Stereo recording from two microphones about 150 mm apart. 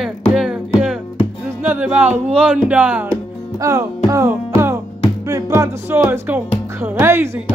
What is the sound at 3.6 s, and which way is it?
Music, 20° right (ahead or behind).